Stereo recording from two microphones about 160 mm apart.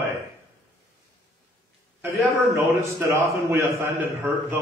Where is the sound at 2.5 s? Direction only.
15° right (ahead or behind).